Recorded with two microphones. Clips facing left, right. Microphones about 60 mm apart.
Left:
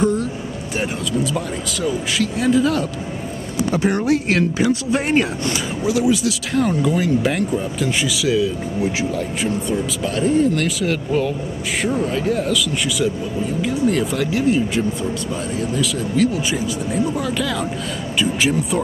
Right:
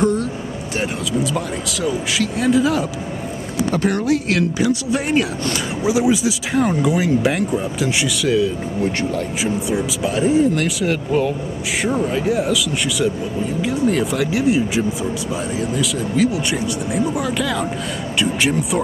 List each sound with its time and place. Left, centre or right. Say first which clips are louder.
0.7 s speech: even; centre
3.5 s speech: even; centre
3.9 s speech: even; left
5.9 s speech: right 1 dB; centre